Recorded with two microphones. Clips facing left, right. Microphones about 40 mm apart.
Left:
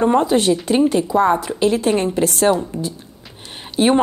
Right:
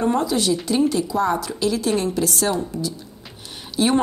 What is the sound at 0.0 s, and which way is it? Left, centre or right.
A woman's voice, left.